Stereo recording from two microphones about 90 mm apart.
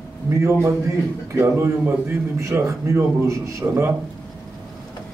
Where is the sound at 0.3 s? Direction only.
30° right (ahead or behind).